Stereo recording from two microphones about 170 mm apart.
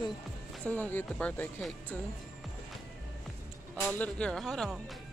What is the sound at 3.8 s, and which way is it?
Speech, 5° left (ahead or behind).